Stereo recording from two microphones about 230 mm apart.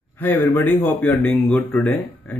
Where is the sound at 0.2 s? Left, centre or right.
Centre.